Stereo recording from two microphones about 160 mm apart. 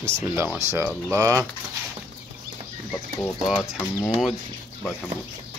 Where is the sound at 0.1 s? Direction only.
15° right (ahead or behind).